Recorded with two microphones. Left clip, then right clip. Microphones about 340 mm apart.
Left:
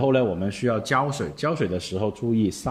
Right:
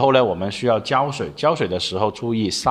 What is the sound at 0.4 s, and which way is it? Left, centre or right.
Speech, centre.